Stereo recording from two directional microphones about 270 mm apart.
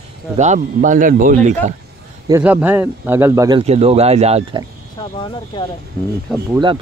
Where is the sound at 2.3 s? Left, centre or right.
Centre.